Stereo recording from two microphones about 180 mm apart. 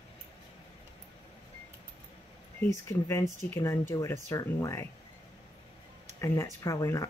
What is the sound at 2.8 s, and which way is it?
Speech, 15° left (ahead or behind).